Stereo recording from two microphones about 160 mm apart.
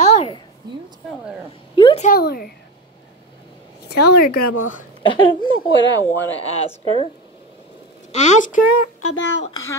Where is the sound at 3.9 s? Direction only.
90° left.